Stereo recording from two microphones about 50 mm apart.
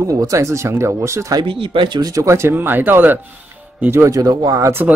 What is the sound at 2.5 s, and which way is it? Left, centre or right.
Speech, right.